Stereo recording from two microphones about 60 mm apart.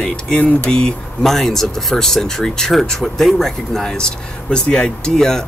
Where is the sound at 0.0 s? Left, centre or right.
Centre.